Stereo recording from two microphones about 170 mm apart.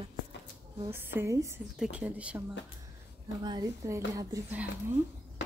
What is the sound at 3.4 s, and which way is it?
Speech, 25° right (ahead or behind).